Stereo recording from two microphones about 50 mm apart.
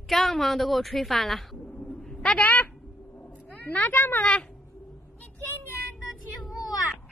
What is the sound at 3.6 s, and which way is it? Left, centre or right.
Speech, left.